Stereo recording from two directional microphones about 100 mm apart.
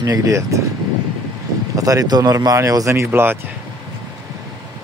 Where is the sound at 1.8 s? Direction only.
35° right (ahead or behind); by 3.4 s 20° right (ahead or behind).